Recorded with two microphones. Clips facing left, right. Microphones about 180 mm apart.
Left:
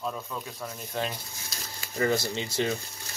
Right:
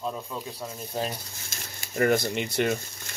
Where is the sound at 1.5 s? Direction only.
55° right (ahead or behind).